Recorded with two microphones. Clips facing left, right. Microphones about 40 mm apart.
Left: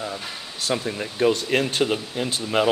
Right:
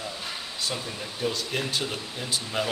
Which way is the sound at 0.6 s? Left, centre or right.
Left.